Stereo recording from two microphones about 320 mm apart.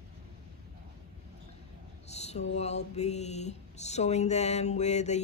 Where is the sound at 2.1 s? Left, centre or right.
Centre.